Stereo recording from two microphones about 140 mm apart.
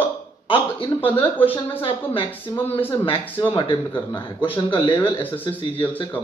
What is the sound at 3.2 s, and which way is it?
Speech, 15° left (ahead or behind).